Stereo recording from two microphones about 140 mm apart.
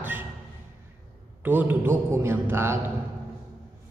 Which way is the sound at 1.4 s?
15° right (ahead or behind).